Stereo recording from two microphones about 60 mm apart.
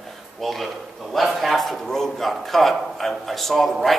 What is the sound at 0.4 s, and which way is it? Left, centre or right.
A man's voice, centre.